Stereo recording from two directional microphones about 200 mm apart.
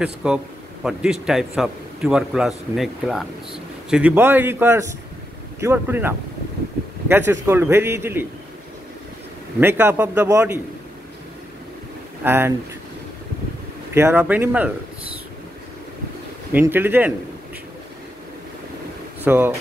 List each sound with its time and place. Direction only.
0.0 s a man's voice: 5° right (ahead or behind)
9.6 s a man's voice: 10° right (ahead or behind)
12.2 s a man's voice: 10° right (ahead or behind)
13.9 s a man's voice: 10° right (ahead or behind)
16.5 s a man's voice: 10° right (ahead or behind)
19.2 s speech: 10° right (ahead or behind)